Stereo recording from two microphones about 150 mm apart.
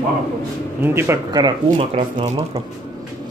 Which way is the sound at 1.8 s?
40° right (ahead or behind).